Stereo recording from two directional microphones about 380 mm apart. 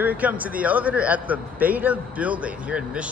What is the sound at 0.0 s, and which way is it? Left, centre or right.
A man's voice, centre.